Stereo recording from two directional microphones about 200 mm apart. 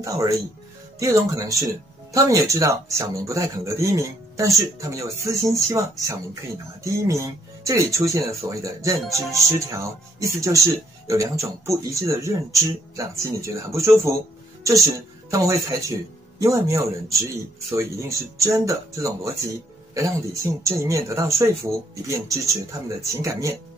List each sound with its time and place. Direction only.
0.0 s a woman's voice: 15° right (ahead or behind)